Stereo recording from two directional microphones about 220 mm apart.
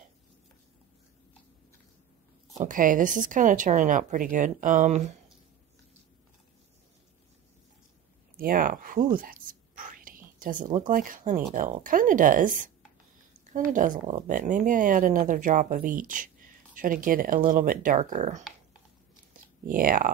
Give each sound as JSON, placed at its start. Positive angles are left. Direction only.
{"t": 2.5, "sound": "speech", "side_deg": -35}
{"t": 8.4, "sound": "speech", "side_deg": -40}
{"t": 19.3, "sound": "a sound", "side_deg": -40}